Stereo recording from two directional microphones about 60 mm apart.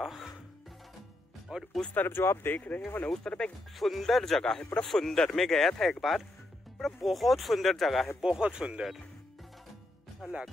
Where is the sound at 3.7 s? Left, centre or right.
Centre.